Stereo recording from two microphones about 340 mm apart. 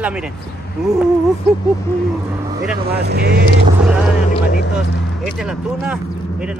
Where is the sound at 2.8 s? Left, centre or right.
Right.